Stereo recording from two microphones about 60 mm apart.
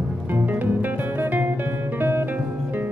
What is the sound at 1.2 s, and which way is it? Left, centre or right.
Music, right.